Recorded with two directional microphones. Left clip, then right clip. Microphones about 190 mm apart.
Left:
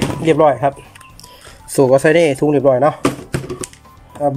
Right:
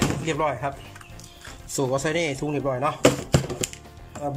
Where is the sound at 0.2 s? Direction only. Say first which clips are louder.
Left 13 dB; 45° left (ahead or behind).